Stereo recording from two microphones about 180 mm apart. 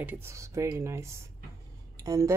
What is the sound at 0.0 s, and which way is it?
Speech, 10° right (ahead or behind).